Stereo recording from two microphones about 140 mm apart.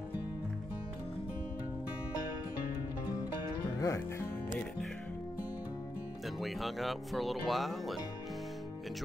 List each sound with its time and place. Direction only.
3.8 s speech: 20° left (ahead or behind)
6.4 s speech: centre (ahead or behind)